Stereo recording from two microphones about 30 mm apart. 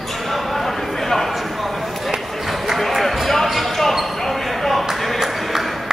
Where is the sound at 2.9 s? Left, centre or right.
Centre.